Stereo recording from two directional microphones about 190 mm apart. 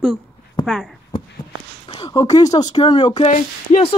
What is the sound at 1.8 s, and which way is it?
Speech, 20° left (ahead or behind).